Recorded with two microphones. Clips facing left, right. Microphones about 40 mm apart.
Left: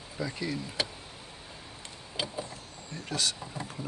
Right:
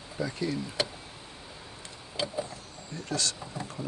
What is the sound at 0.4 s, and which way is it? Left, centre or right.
Speech, centre.